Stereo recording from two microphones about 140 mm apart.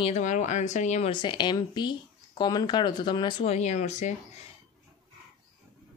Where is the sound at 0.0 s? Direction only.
55° left (ahead or behind).